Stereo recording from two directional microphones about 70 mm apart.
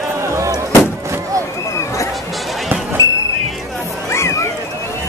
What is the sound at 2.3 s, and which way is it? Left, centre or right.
Music, centre.